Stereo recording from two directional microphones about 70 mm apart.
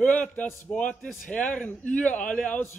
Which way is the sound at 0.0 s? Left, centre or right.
Left.